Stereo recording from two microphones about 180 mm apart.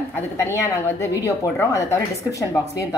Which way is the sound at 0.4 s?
15° left (ahead or behind).